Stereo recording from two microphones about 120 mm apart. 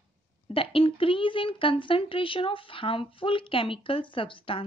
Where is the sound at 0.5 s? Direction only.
50° left (ahead or behind).